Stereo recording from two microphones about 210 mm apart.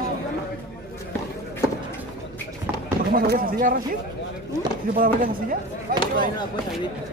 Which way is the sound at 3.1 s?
45° right (ahead or behind).